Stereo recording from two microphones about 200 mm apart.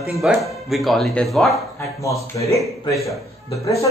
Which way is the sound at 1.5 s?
15° left (ahead or behind).